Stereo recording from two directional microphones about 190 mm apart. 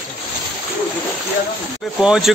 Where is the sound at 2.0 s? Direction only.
5° right (ahead or behind).